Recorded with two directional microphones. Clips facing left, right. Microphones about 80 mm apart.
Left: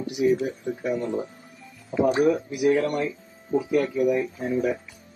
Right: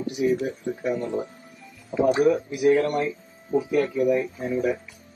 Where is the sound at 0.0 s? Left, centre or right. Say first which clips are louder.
Left 1 dB; right.